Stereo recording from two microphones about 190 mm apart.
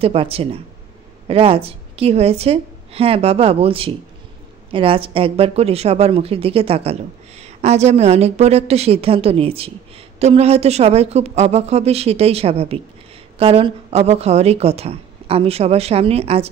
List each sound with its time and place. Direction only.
0.0 s a woman's voice: 30° right (ahead or behind)